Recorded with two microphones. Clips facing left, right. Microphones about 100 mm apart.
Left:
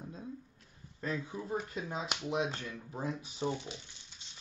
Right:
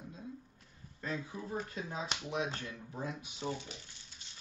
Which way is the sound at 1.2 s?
25° left (ahead or behind).